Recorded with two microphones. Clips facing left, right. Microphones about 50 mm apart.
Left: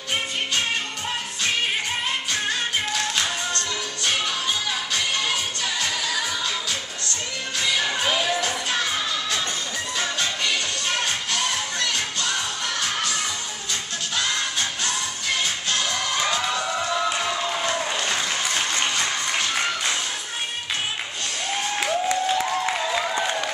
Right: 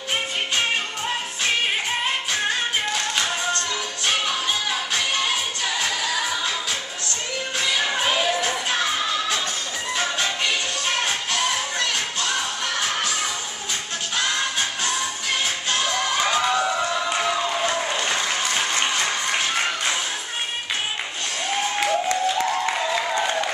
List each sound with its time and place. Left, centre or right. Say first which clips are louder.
4.9 s music: right 1 dB; centre
7.8 s music: right 2 dB; centre
14.1 s music: right 2 dB; centre
17.1 s applause: right 2 dB; centre
21.7 s a sound: even; centre